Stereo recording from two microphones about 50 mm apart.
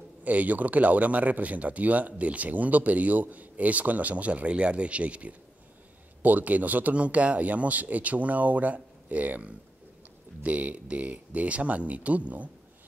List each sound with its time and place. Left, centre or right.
0.2 s speech: right